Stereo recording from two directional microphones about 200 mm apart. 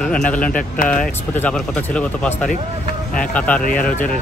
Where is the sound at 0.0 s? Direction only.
5° left (ahead or behind).